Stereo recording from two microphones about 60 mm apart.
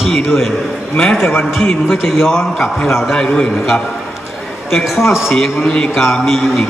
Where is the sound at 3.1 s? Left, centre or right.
Centre.